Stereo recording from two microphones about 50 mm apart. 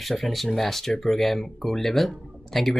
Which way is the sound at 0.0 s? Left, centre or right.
Centre.